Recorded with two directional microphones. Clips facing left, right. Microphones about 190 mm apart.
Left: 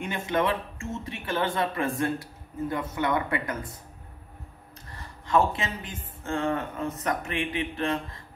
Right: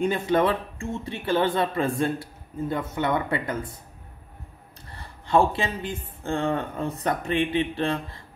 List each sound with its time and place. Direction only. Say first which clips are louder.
0.0 s a man's voice: right 5 dB; 35° right (ahead or behind)
5.2 s a man's voice: right 3 dB; 30° right (ahead or behind)